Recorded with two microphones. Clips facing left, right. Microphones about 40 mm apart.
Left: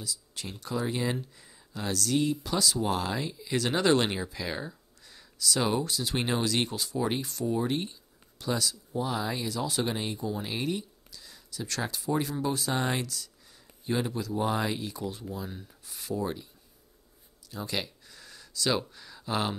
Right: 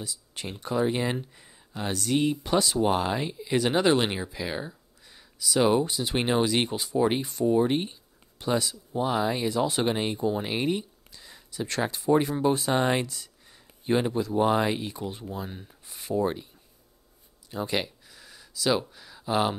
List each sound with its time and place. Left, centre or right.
0.0 s speech: right
17.5 s speech: right
18.0 s a sound: centre